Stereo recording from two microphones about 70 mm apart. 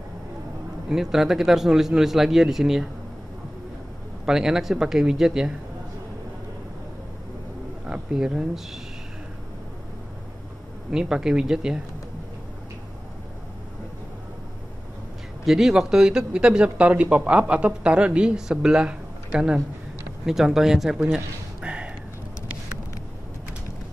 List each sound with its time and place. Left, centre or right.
0.8 s speech: centre
4.3 s speech: centre
7.8 s speech: centre
10.9 s speech: centre
15.4 s speech: centre
21.1 s a sound: centre